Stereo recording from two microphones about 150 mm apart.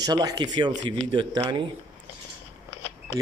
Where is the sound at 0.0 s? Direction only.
25° right (ahead or behind).